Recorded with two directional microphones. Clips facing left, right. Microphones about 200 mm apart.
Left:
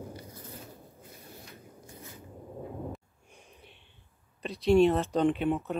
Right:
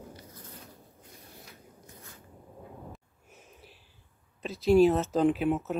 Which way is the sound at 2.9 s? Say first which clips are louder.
Left 6 dB; 5° right (ahead or behind).